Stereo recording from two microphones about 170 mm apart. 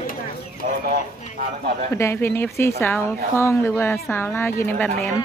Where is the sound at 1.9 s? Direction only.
15° left (ahead or behind).